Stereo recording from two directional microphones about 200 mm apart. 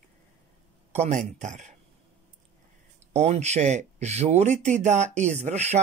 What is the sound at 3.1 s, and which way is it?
Speech, 35° right (ahead or behind).